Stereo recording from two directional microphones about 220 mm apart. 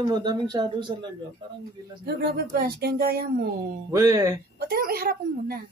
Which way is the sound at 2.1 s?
45° right (ahead or behind).